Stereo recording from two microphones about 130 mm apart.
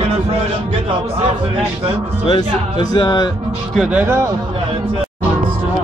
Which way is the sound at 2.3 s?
35° left (ahead or behind).